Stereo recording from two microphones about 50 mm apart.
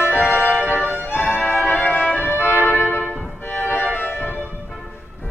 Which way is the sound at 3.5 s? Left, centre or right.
Left.